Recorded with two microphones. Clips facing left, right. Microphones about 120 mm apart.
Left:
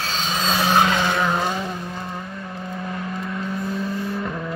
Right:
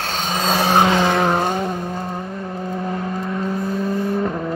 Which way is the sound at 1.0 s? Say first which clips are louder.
Right 4 dB; 50° right (ahead or behind).